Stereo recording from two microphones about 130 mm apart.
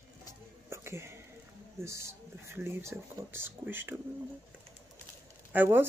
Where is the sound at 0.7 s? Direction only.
20° right (ahead or behind).